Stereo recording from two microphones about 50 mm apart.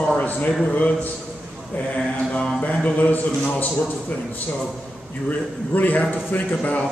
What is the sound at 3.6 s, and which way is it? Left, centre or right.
Speech, left.